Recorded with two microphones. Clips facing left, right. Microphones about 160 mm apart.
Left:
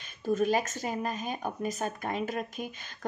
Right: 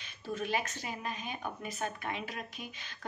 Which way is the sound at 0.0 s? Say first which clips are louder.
Left 10 dB; 45° left (ahead or behind).